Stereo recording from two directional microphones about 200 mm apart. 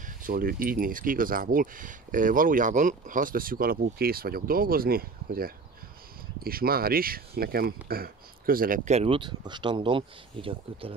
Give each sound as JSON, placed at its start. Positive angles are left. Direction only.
{"t": 0.0, "sound": "speech", "side_deg": -45}